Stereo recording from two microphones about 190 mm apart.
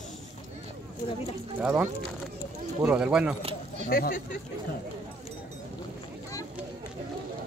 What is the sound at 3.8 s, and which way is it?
Speech, 50° left (ahead or behind).